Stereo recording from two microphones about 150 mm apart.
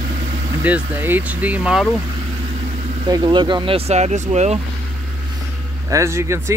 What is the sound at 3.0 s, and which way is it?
Speech, 25° right (ahead or behind).